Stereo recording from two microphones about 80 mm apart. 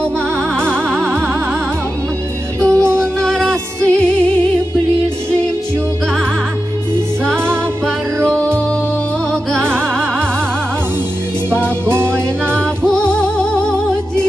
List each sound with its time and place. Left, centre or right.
0.6 s music: centre
2.6 s music: centre
9.3 s music: centre
11.8 s music: right
12.1 s music: centre